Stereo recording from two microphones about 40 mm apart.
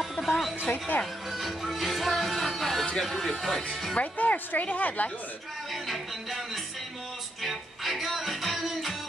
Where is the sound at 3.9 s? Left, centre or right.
Left.